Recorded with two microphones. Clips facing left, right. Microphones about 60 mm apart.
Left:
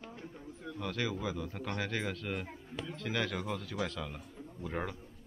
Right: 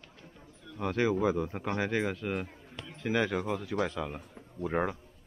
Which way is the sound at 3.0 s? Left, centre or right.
Centre.